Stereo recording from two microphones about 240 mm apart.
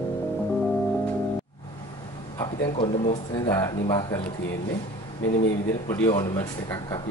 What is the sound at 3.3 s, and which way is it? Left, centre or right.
Speech, centre.